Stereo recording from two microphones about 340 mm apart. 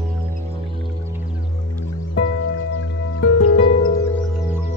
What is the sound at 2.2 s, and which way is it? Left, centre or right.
Music, left.